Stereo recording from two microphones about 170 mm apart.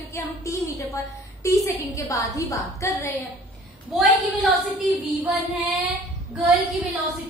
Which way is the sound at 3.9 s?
5° right (ahead or behind).